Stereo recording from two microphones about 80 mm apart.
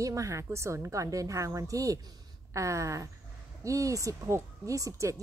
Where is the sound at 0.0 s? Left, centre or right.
Right.